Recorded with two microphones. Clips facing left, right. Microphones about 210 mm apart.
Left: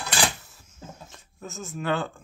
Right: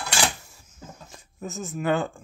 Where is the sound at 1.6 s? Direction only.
5° right (ahead or behind).